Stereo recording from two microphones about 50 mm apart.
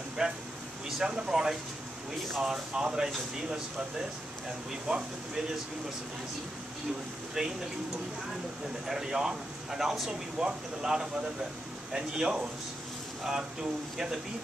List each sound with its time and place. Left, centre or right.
0.2 s speech: centre
0.8 s a sound: centre
1.1 s speech: centre
4.8 s speech: centre
7.4 s speech: centre
8.8 s speech: centre
13.6 s speech: centre